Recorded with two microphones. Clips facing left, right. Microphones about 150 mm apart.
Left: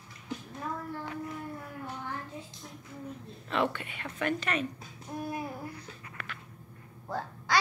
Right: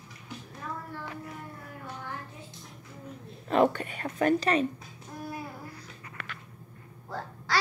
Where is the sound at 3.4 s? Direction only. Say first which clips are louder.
Right 7 dB; 40° right (ahead or behind).